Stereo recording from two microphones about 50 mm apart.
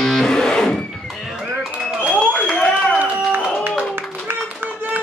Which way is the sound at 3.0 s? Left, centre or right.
Right.